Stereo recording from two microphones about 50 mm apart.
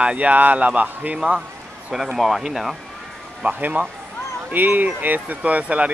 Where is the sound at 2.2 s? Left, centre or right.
Centre.